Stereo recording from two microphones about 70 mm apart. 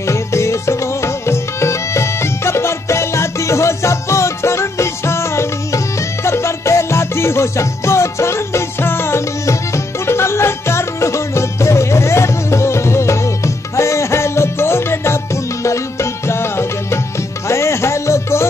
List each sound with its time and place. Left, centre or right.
0.0 s music: left